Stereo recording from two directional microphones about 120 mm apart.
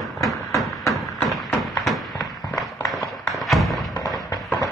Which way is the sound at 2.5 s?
Centre (ahead or behind).